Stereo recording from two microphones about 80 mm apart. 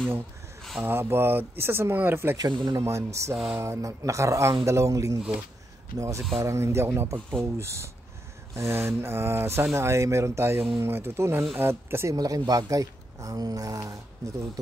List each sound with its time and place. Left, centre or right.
0.6 s a sound: centre
0.8 s speech: right
2.3 s speech: right
2.8 s speech: right
12.2 s speech: right